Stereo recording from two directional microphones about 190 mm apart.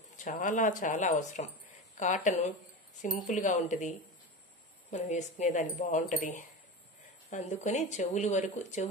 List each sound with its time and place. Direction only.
0.2 s speech: 40° left (ahead or behind)
4.9 s speech: 40° left (ahead or behind)